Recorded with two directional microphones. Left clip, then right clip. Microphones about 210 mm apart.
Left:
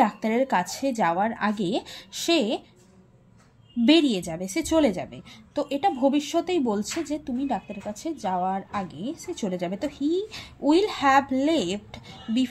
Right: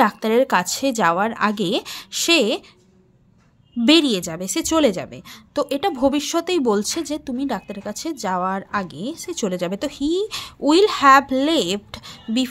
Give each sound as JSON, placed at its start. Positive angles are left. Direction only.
{"t": 0.0, "sound": "a woman's voice", "side_deg": -30}
{"t": 3.8, "sound": "a woman's voice", "side_deg": -30}